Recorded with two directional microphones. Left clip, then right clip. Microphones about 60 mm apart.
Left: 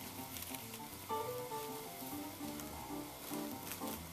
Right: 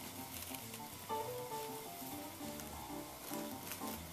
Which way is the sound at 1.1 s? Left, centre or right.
Right.